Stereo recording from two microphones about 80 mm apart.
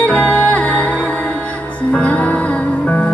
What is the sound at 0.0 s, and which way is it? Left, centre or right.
Music, centre.